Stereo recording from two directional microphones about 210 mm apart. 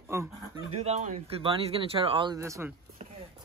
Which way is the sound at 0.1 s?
15° right (ahead or behind).